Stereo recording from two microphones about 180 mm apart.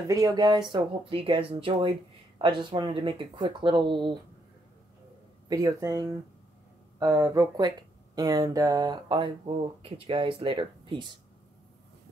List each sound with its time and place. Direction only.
0.1 s speech: 20° right (ahead or behind)
5.5 s speech: 20° right (ahead or behind)